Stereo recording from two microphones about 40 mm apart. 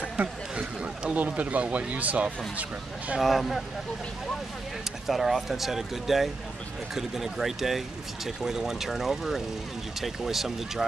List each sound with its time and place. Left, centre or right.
1.1 s speech: right
3.2 s speech: centre
5.0 s speech: centre